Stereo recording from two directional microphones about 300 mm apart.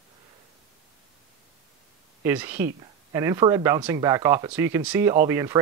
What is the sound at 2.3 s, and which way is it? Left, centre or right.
Speech, centre.